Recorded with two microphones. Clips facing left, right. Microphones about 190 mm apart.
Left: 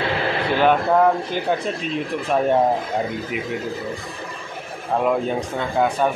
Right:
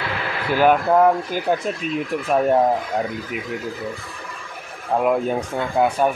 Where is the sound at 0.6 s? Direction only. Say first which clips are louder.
Right 2 dB; 5° right (ahead or behind).